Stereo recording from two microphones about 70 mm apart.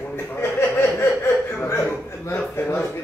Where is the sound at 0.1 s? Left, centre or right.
Left.